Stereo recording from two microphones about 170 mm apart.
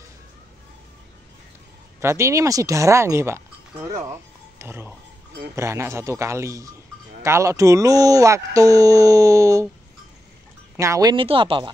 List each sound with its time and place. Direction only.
2.0 s a man's voice: 15° right (ahead or behind)
10.8 s speech: 20° right (ahead or behind)